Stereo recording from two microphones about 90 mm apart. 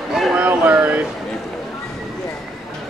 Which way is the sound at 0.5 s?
15° right (ahead or behind).